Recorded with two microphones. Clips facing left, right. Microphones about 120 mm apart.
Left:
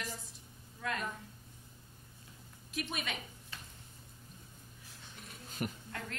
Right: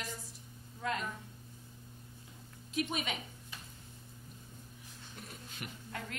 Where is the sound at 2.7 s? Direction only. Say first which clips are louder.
Right 4 dB; 20° right (ahead or behind).